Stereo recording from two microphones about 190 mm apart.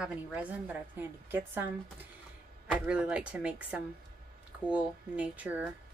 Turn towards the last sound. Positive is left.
turn(degrees=-10)  # may be behind; listen again after turning